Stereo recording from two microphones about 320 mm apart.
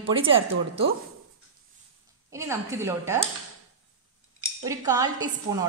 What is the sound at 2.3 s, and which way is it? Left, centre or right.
A woman's voice, centre.